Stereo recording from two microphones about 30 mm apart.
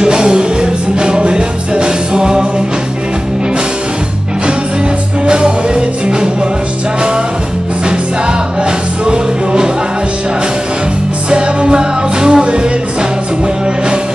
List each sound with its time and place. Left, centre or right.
0.0 s music: right
5.2 s music: right
9.0 s music: right
11.2 s music: right